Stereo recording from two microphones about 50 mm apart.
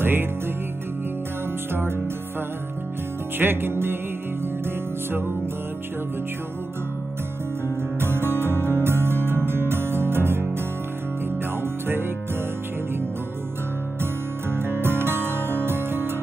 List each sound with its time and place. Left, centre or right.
0.0 s music: right
3.3 s music: right
8.0 s music: right
14.6 s music: right